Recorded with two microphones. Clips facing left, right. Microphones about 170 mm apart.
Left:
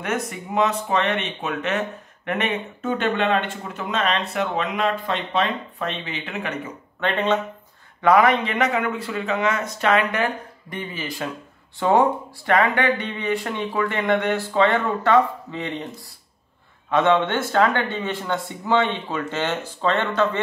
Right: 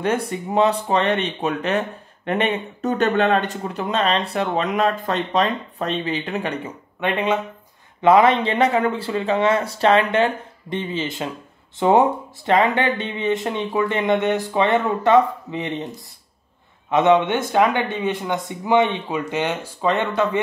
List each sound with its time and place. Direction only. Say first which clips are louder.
0.0 s speech: right 5 dB; 30° right (ahead or behind)
7.0 s speech: right 1 dB; 10° right (ahead or behind)
8.0 s speech: right 2 dB; 25° right (ahead or behind)
16.9 s speech: right 3 dB; 15° right (ahead or behind)